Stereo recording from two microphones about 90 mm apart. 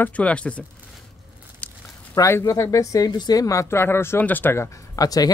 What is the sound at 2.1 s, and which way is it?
Speech, 35° left (ahead or behind).